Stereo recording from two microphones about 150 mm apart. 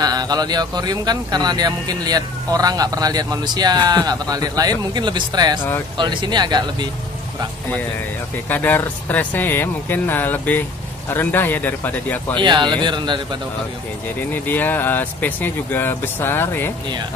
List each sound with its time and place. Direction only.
0.0 s speech: 25° right (ahead or behind)
8.5 s speech: 10° left (ahead or behind)
12.4 s speech: 30° right (ahead or behind)
14.3 s speech: 10° left (ahead or behind)